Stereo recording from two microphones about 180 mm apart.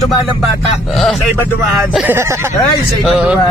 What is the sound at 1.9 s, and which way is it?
Speech, 10° right (ahead or behind).